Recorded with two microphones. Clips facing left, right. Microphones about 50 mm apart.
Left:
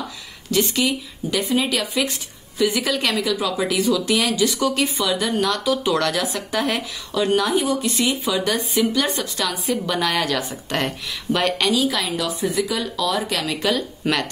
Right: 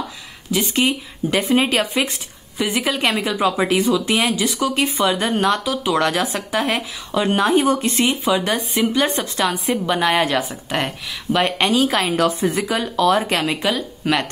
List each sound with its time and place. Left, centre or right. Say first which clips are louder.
0.7 s speech: right 3 dB; right; by 4.6 s centre
4.7 s speech: right 3 dB; right
10.5 s speech: right 1 dB; centre
11.6 s speech: right 3 dB; right
13.6 s speech: even; centre